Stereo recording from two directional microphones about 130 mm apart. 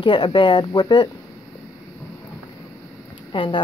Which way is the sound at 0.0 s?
40° left (ahead or behind).